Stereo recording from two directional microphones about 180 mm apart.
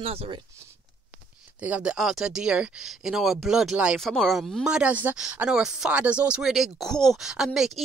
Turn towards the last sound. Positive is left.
turn(degrees=0)  # may be behind; listen again after turning